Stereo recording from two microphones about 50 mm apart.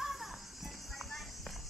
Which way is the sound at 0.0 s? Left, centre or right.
Centre.